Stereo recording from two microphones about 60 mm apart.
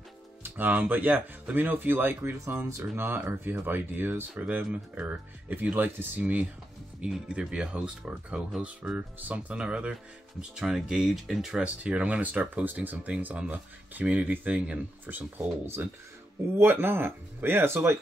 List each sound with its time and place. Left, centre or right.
0.4 s speech: right
7.0 s speech: centre
8.9 s speech: right; by 11.6 s centre
11.6 s speech: right
15.3 s speech: right